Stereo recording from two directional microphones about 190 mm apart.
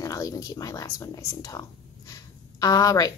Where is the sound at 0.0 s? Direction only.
15° left (ahead or behind).